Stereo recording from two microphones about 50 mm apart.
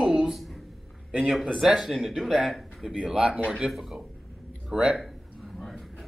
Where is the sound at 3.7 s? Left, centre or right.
Centre.